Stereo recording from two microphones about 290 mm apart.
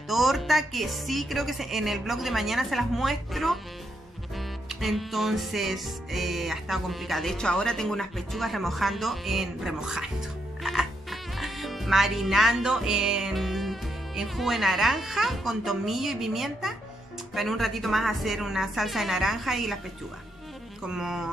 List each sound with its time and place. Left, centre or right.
0.1 s music: centre
20.8 s music: centre